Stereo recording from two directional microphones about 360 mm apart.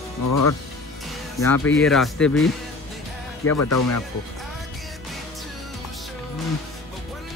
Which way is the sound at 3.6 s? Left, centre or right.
Left.